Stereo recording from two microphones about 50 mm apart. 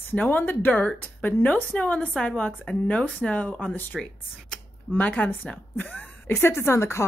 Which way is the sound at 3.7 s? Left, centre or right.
Left.